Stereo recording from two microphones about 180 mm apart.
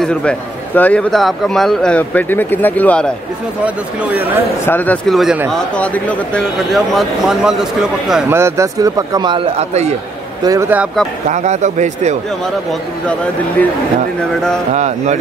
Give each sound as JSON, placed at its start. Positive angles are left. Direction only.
{"t": 0.0, "sound": "a man's voice", "side_deg": 5}
{"t": 3.6, "sound": "speech", "side_deg": -5}
{"t": 4.6, "sound": "a man's voice", "side_deg": 10}
{"t": 8.3, "sound": "speech", "side_deg": -15}
{"t": 10.4, "sound": "speech", "side_deg": -15}
{"t": 11.2, "sound": "a man's voice", "side_deg": -40}
{"t": 13.0, "sound": "a man's voice", "side_deg": 5}
{"t": 14.7, "sound": "a man's voice", "side_deg": -40}